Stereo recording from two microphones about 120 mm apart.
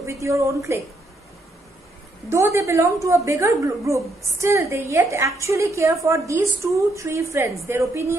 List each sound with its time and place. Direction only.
0.0 s a woman's voice: 25° right (ahead or behind)
2.2 s a woman's voice: 25° right (ahead or behind)